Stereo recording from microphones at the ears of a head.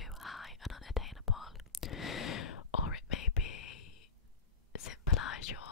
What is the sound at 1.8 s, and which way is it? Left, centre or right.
Whispering, left.